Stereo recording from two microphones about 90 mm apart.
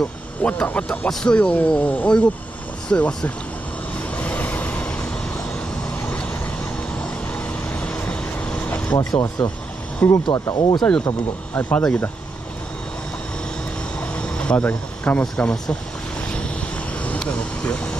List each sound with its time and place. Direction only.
0.4 s speech: 15° left (ahead or behind)
4.2 s train: 15° left (ahead or behind)
7.7 s vehicle: 15° left (ahead or behind)
8.9 s speech: 40° left (ahead or behind)
10.0 s speech: 20° left (ahead or behind)
10.5 s speech: 50° left (ahead or behind)
11.1 s speech: 15° left (ahead or behind)
13.9 s speech: 10° left (ahead or behind)
17.0 s speech: 15° left (ahead or behind)